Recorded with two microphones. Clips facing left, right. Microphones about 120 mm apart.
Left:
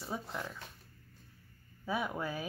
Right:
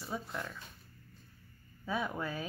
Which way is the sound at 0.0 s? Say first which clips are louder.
Even; 15° left (ahead or behind).